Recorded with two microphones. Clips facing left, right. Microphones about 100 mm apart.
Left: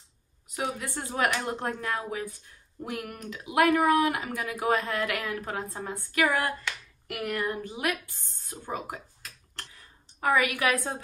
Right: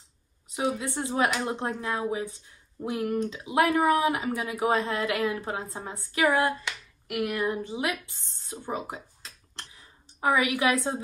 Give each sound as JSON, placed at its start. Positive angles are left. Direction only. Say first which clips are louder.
{"t": 0.6, "sound": "speech", "louder": "right 4 dB", "side_deg": -20}
{"t": 7.1, "sound": "speech", "louder": "right 3 dB", "side_deg": -10}
{"t": 7.4, "sound": "speech", "louder": "right 2 dB", "side_deg": -20}